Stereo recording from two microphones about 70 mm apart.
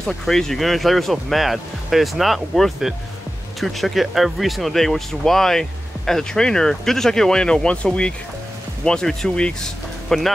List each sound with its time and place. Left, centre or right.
0.0 s speech: centre